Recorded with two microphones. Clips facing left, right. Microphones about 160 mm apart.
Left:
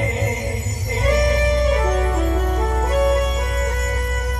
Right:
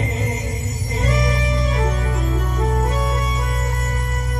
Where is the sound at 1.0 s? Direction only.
55° left (ahead or behind).